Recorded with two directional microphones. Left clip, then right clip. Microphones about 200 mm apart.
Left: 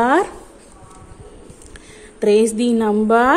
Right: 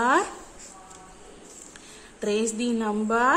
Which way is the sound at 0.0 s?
30° left (ahead or behind).